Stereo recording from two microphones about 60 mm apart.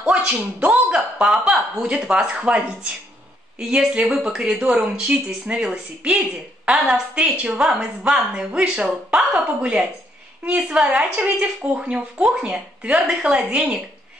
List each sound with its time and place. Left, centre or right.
0.0 s speech: centre